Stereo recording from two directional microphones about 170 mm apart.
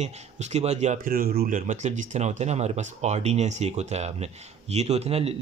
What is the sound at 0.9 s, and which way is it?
Speech, 60° right (ahead or behind).